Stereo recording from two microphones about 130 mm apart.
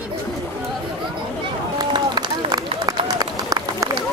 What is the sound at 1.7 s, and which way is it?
Run, 35° right (ahead or behind).